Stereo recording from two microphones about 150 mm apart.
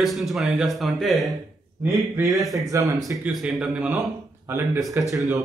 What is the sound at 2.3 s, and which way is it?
A man's voice, centre (ahead or behind).